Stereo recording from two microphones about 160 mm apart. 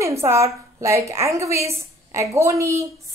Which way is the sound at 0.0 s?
15° right (ahead or behind).